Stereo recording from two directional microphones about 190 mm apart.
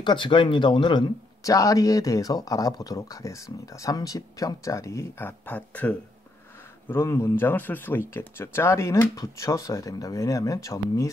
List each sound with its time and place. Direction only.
0.0 s speech: 25° left (ahead or behind)